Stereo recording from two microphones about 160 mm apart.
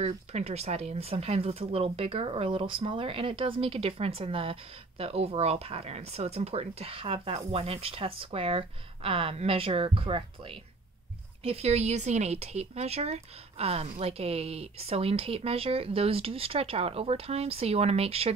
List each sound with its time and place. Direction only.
0.0 s speech: 40° right (ahead or behind)